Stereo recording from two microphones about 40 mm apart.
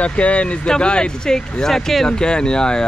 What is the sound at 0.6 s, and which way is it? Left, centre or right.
Speech, left.